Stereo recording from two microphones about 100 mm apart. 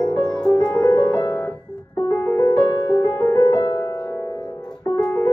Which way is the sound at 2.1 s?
25° left (ahead or behind).